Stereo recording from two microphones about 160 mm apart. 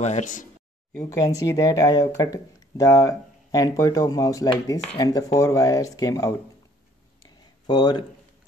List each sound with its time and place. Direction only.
0.0 s speech: 50° left (ahead or behind)
1.1 s speech: 20° left (ahead or behind)
7.2 s a sound: 25° left (ahead or behind)